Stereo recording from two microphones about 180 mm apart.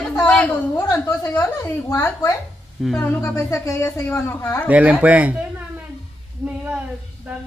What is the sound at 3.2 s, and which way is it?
Speech, 15° left (ahead or behind).